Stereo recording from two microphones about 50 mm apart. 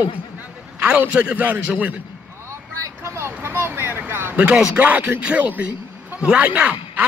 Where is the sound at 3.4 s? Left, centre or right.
Right.